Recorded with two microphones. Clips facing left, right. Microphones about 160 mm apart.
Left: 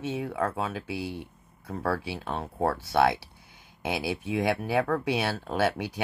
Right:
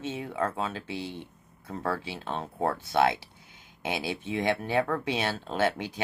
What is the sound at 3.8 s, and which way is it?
Speech, 10° left (ahead or behind).